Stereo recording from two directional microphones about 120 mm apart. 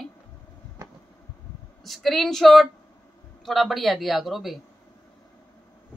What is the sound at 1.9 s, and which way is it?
Speech, centre (ahead or behind).